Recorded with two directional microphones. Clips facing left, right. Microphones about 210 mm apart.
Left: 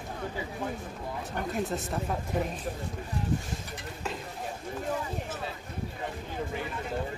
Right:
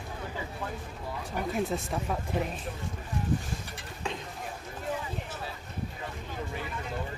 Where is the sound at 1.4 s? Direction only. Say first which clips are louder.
Right 2 dB; centre (ahead or behind).